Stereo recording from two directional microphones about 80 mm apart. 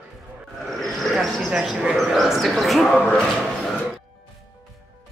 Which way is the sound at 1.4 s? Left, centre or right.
Centre.